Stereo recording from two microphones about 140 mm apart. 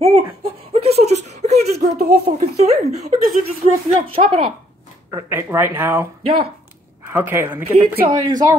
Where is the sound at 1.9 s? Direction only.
90° right.